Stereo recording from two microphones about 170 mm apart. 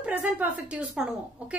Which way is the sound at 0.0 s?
10° right (ahead or behind).